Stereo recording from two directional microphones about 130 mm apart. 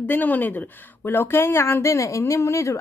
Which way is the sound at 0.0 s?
15° left (ahead or behind).